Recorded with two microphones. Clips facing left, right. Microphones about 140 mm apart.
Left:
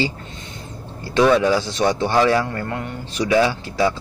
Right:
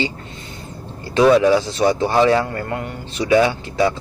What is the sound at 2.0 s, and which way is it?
Speech, 25° right (ahead or behind).